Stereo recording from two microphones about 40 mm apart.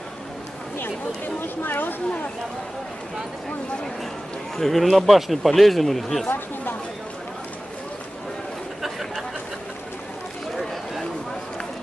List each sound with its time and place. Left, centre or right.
0.7 s speech: left
4.6 s speech: centre
6.2 s chatter: left
10.5 s a sound: centre